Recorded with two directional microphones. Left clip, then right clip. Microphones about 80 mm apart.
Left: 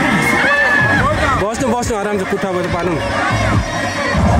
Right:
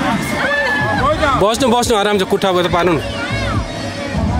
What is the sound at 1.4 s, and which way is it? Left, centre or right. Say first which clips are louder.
Speech: right 4 dB; centre.